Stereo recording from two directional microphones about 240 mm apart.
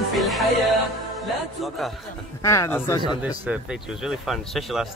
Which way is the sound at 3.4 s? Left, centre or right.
Centre.